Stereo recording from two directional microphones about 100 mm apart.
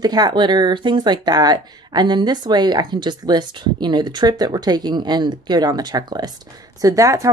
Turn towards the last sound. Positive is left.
turn(degrees=-30)  # may be behind; listen again after turning